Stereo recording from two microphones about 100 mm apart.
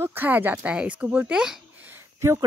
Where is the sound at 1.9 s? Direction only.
25° right (ahead or behind).